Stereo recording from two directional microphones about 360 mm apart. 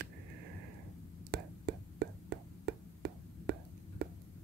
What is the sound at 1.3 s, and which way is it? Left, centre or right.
Whispering, right.